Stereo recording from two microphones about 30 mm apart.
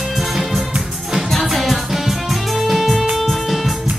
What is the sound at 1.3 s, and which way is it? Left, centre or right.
Music, centre.